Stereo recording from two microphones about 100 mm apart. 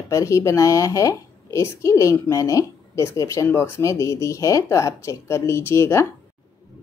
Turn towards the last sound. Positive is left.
turn(degrees=25)  # may be behind; listen again after turning